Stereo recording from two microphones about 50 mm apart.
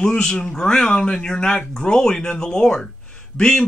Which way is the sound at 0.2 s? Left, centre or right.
Centre.